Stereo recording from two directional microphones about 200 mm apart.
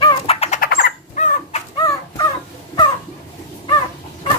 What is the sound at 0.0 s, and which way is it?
Bird, 25° left (ahead or behind).